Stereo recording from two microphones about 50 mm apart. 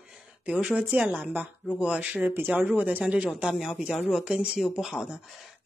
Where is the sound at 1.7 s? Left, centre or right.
Right.